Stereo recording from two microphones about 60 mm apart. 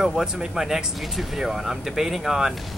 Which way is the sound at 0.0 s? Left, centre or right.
Centre.